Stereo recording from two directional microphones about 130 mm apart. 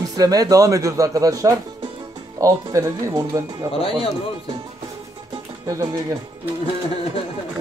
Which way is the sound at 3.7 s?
45° left (ahead or behind).